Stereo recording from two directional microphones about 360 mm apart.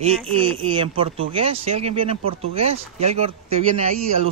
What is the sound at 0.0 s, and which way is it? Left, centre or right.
Speech, centre.